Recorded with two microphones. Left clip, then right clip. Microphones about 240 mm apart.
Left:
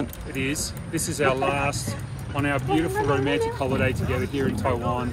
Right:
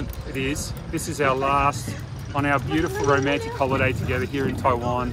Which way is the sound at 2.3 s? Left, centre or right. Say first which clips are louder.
Right 3 dB; right.